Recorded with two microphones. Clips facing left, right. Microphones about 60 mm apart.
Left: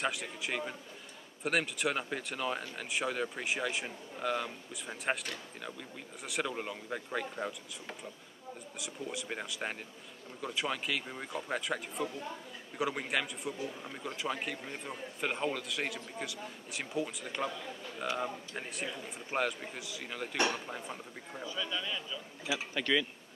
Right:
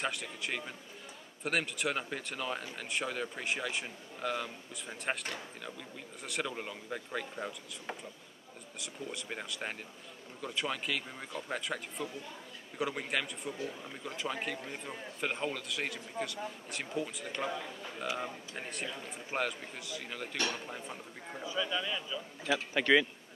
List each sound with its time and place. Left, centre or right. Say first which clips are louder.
0.0 s a man's voice: left 1 dB; centre
6.2 s a man's voice: left 2 dB; centre
8.7 s a man's voice: left 1 dB; centre
21.5 s speech: right 3 dB; centre
22.8 s speech: right 5 dB; right